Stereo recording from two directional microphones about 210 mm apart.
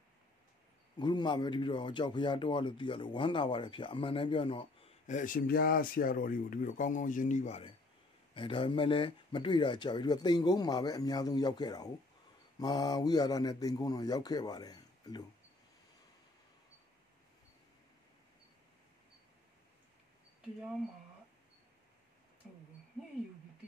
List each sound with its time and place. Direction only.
0.9 s speech: 20° left (ahead or behind)
5.0 s speech: 40° left (ahead or behind); by 15.2 s 20° left (ahead or behind)
22.4 s a sound: centre (ahead or behind)